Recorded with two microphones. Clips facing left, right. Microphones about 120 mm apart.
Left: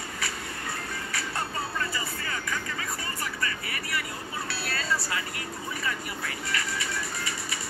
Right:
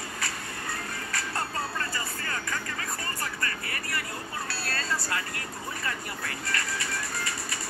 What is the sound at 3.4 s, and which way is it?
Vehicle, 45° right (ahead or behind).